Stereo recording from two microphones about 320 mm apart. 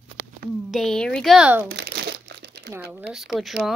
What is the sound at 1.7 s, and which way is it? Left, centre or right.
Crumpling, right.